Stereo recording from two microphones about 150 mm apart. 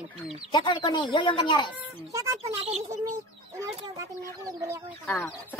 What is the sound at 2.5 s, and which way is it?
Speech, 45° right (ahead or behind).